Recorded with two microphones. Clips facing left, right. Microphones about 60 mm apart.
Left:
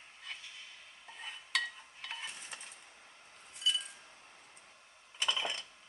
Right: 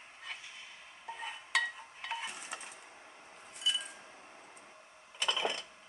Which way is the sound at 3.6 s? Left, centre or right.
Centre.